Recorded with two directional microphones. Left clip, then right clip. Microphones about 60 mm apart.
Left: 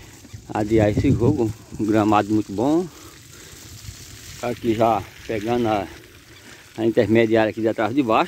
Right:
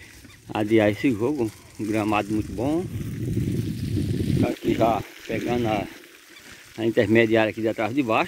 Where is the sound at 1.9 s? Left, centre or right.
Left.